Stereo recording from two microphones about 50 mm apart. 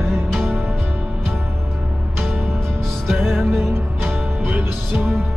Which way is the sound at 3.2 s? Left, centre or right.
Centre.